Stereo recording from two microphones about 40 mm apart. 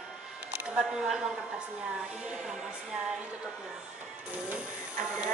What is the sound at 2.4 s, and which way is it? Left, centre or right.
Speech, centre.